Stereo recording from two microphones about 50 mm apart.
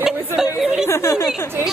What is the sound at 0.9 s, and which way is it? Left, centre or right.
Speech, left.